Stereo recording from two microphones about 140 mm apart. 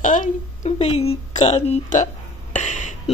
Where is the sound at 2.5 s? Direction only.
55° left (ahead or behind).